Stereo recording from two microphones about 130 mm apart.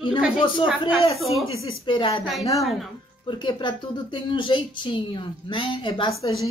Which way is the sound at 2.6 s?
Centre (ahead or behind).